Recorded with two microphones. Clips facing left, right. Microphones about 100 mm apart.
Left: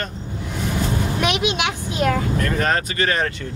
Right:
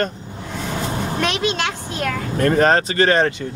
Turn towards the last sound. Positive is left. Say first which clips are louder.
# right 5 dB
turn(degrees=-30)  # may be behind; listen again after turning